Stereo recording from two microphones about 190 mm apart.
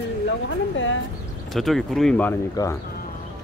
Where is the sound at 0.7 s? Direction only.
85° left.